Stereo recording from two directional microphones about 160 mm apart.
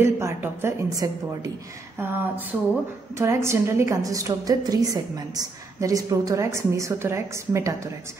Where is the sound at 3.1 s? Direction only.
15° right (ahead or behind).